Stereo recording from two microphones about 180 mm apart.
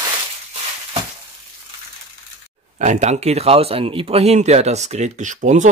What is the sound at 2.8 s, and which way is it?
Speech, 40° right (ahead or behind).